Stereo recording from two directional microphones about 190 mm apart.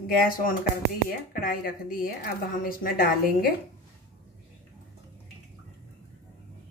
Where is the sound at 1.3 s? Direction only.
50° left (ahead or behind).